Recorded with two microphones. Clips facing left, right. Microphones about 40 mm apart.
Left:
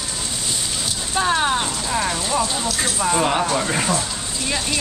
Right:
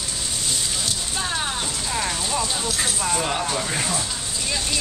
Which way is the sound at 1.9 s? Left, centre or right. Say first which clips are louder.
Left 2 dB; centre.